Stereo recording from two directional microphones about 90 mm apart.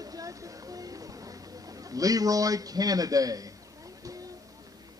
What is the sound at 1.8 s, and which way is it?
A man's voice, 40° right (ahead or behind).